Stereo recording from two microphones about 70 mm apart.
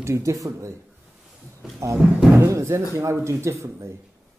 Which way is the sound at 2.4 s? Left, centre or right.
Right.